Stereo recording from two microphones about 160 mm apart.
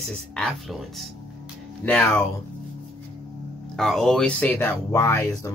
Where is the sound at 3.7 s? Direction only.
Centre (ahead or behind); by 5.5 s 20° left (ahead or behind).